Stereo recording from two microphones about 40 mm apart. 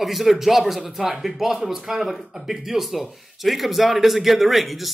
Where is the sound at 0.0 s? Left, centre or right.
Centre.